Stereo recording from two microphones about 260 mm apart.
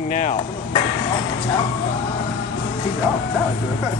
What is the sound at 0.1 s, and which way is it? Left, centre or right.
Speech, left.